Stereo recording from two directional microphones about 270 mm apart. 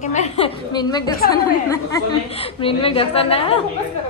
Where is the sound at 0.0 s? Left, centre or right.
Left.